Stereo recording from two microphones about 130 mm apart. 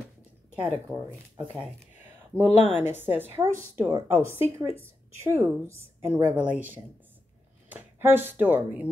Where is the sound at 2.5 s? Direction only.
60° left (ahead or behind).